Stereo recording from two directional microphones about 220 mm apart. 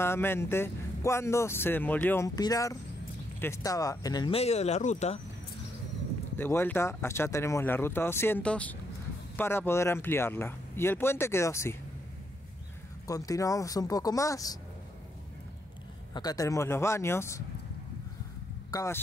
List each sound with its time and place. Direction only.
0.0 s speech: 10° left (ahead or behind); by 5.2 s 30° left (ahead or behind)
6.3 s speech: 10° left (ahead or behind)
13.0 s speech: 15° left (ahead or behind)
16.1 s speech: 20° left (ahead or behind)
18.7 s speech: 15° left (ahead or behind)